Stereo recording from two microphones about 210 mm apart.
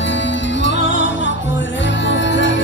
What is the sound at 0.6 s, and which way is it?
Music, 60° left (ahead or behind).